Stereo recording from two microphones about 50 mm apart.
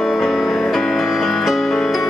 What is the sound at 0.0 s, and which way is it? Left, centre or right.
Music, centre.